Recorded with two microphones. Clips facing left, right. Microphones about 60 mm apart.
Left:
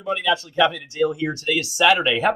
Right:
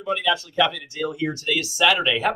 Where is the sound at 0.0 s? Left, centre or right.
Centre.